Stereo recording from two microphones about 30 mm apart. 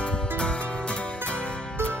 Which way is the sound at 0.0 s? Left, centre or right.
Left.